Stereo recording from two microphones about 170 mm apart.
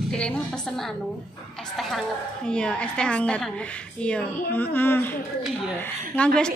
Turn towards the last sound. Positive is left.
turn(degrees=10)  # may be behind; listen again after turning